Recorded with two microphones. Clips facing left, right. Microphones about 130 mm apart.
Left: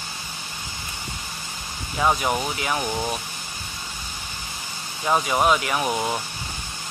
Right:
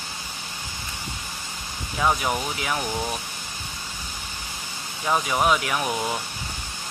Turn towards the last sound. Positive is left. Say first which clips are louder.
# left 2 dB
turn(degrees=10)  # may be behind; listen again after turning